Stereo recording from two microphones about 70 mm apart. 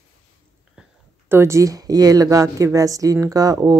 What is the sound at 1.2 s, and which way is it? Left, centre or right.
Speech, right.